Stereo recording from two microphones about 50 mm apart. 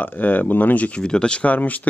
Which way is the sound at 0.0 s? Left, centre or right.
Left.